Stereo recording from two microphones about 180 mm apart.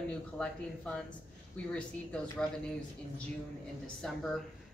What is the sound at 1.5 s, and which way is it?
Speech, 5° left (ahead or behind).